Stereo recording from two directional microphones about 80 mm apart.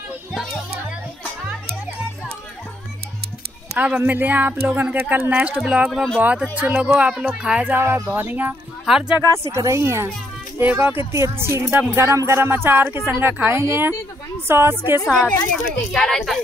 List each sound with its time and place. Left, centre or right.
0.3 s music: centre
3.7 s speech: centre
5.3 s speech: centre
5.7 s speech: centre
6.1 s speech: centre
7.7 s speech: right
8.8 s speech: centre
9.2 s speech: right
10.6 s speech: right
15.0 s speech: centre